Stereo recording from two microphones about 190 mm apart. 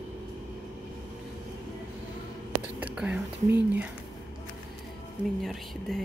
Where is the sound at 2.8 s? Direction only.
5° right (ahead or behind).